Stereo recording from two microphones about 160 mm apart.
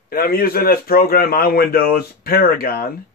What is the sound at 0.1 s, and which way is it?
A man's voice, 70° left (ahead or behind).